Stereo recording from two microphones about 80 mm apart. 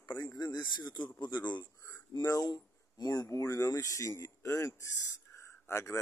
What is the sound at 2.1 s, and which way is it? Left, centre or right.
Speech, left.